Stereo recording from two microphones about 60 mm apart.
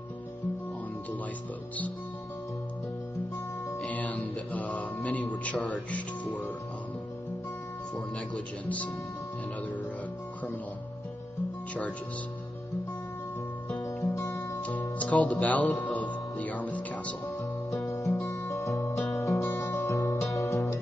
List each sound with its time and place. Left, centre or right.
3.9 s music: left
8.6 s speech: left
13.7 s music: left
14.6 s music: left
17.4 s music: left